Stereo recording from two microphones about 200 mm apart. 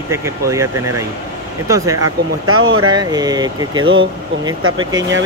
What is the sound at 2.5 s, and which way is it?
Speech, 90° right.